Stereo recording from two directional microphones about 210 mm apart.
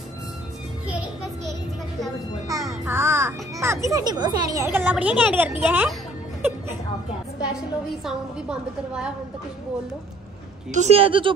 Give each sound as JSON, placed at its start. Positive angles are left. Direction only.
{"t": 2.4, "sound": "music", "side_deg": -15}
{"t": 3.9, "sound": "speech", "side_deg": -20}
{"t": 4.7, "sound": "a woman's voice", "side_deg": -5}
{"t": 8.0, "sound": "a woman's voice", "side_deg": -5}
{"t": 10.7, "sound": "speech", "side_deg": -30}